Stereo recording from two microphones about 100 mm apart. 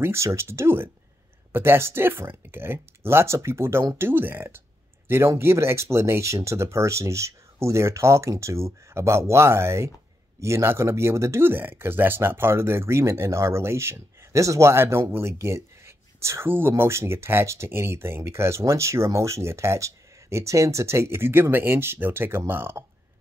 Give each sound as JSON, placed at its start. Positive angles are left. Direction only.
{"t": 0.0, "sound": "speech", "side_deg": -25}